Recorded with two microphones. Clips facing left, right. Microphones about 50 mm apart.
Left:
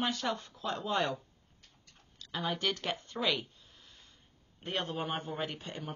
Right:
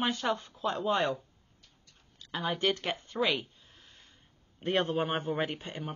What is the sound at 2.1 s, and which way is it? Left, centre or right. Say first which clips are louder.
Speech: right 2 dB; right.